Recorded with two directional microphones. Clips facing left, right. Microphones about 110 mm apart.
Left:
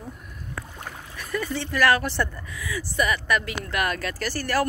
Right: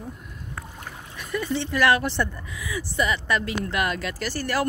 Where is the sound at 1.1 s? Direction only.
20° right (ahead or behind).